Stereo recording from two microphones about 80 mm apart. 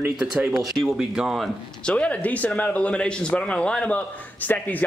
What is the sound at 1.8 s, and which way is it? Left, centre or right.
Speech, centre.